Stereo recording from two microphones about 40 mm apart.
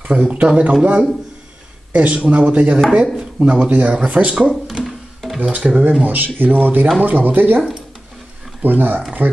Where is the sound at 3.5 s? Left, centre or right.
Right.